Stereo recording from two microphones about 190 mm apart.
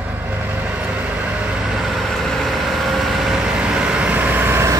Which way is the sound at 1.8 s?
Centre (ahead or behind).